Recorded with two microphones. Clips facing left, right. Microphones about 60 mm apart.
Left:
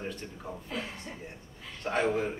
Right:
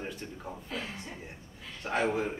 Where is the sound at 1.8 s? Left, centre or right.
Centre.